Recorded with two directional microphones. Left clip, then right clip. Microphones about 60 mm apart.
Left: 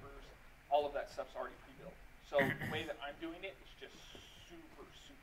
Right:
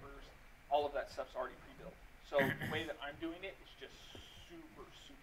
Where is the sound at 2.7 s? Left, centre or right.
Right.